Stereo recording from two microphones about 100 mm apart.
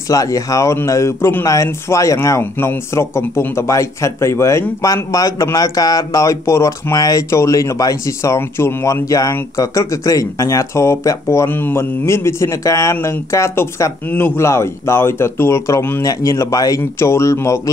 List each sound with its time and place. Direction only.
0.1 s speech: 35° left (ahead or behind)
14.0 s speech: 20° left (ahead or behind)